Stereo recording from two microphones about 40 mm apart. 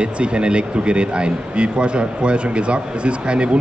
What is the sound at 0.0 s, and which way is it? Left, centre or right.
Speech, right.